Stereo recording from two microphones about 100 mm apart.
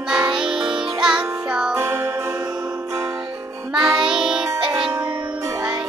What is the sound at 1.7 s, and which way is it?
Music, 30° right (ahead or behind).